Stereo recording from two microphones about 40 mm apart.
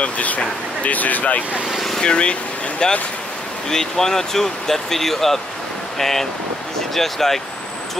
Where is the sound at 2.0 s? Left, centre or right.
Left.